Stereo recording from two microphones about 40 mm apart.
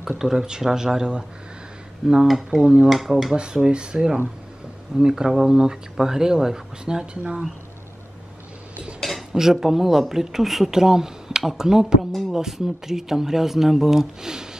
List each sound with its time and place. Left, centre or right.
0.2 s speech: centre
2.2 s rub: centre
2.6 s speech: right
2.9 s rub: centre
3.5 s speech: right
9.3 s speech: centre